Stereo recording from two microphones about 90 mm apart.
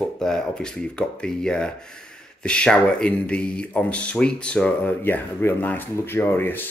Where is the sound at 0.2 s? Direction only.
5° left (ahead or behind).